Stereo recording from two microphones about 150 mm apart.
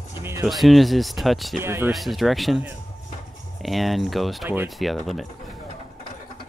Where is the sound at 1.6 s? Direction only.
15° right (ahead or behind).